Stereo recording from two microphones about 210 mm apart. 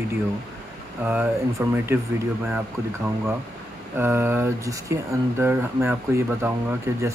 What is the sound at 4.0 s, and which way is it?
Speech, 10° right (ahead or behind).